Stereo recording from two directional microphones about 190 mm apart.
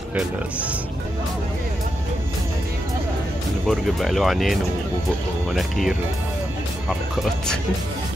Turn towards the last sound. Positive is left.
turn(degrees=0)  # may be behind; listen again after turning